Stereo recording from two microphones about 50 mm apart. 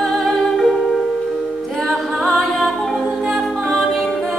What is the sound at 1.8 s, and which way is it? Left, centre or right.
Music, centre.